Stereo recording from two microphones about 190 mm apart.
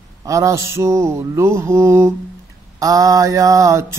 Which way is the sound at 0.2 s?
15° right (ahead or behind).